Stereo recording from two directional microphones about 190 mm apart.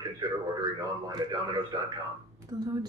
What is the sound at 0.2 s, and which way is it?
A woman's voice, 20° right (ahead or behind).